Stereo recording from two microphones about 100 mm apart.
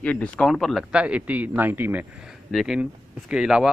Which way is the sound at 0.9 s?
15° right (ahead or behind).